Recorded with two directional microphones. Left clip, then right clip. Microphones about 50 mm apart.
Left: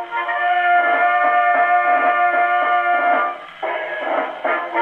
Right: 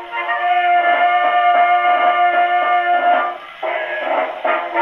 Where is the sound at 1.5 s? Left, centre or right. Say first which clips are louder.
Right 2 dB; left.